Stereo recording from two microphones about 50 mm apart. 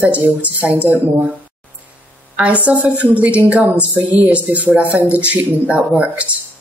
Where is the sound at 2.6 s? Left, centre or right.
Right.